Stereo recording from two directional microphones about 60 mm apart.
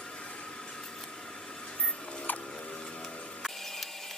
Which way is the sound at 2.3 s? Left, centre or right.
Left.